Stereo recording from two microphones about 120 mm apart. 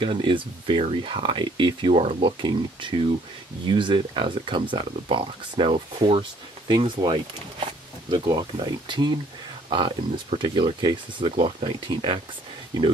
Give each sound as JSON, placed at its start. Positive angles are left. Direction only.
{"t": 0.0, "sound": "speech", "side_deg": -45}
{"t": 2.2, "sound": "speech", "side_deg": -40}